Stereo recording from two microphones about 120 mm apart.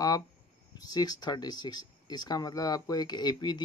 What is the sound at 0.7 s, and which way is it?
Speech, 35° left (ahead or behind).